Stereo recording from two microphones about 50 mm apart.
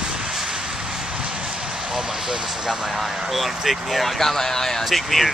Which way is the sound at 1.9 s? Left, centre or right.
Centre.